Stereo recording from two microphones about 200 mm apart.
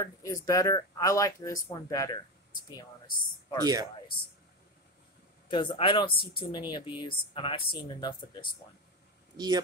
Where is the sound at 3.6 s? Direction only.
20° right (ahead or behind).